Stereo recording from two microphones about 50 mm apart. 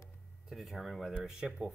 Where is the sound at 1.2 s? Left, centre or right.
Centre.